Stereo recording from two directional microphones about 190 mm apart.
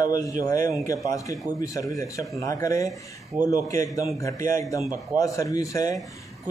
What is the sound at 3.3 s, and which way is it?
Speech, 10° right (ahead or behind).